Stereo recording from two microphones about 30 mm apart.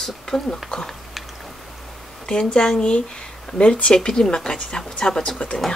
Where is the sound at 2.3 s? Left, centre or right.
Left.